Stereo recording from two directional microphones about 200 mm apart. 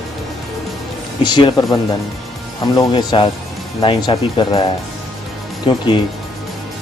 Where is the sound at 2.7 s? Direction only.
25° left (ahead or behind).